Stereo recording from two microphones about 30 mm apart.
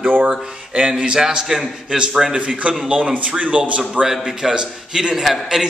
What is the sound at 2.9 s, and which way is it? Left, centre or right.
Speech, right.